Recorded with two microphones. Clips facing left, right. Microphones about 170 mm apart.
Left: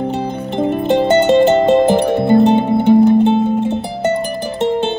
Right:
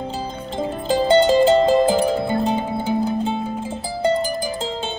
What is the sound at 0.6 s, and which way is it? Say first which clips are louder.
Music: left 6 dB; 60° left (ahead or behind).